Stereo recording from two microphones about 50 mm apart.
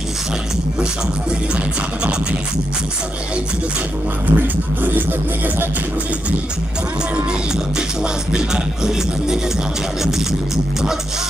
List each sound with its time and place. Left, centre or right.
4.4 s music: right
8.3 s music: centre